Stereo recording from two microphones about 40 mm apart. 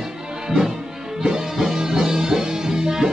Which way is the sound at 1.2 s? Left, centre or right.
Centre.